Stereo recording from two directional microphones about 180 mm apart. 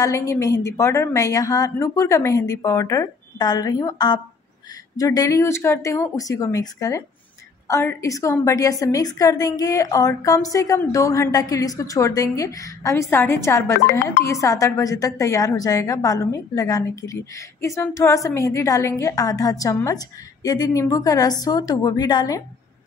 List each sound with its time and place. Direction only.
0.0 s a woman's voice: 15° left (ahead or behind)